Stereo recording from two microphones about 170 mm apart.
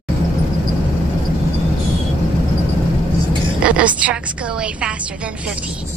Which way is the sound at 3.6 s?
5° right (ahead or behind).